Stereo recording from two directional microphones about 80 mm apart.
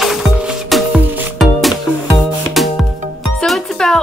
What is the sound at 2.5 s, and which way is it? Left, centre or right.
Music, centre.